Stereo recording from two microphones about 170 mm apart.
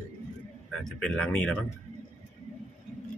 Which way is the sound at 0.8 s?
5° left (ahead or behind).